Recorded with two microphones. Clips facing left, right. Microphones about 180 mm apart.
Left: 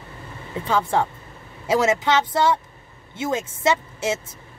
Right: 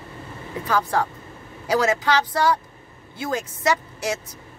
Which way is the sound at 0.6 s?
25° left (ahead or behind).